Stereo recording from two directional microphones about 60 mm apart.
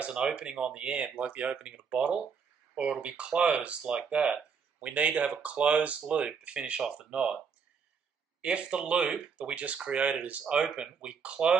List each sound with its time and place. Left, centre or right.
0.0 s speech: centre
8.4 s speech: centre
10.4 s speech: centre